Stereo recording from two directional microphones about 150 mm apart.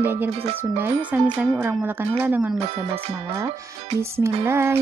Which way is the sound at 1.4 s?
15° right (ahead or behind).